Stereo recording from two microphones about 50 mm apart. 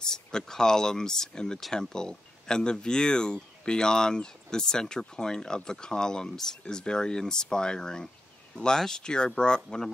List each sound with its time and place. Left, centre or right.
0.0 s speech: centre